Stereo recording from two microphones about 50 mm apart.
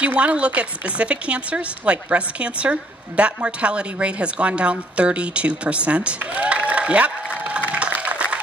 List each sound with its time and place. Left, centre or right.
0.0 s speech: right